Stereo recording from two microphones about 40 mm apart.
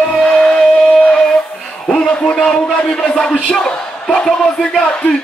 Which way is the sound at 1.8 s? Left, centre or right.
Centre.